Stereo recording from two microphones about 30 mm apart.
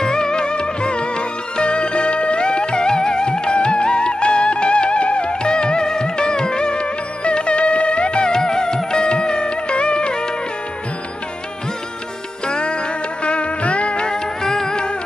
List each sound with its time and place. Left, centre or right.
0.0 s music: left
8.3 s music: left
12.4 s music: left
14.1 s music: centre